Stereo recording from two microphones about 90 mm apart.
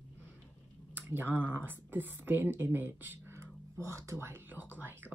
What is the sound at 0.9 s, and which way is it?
Speech, 20° right (ahead or behind).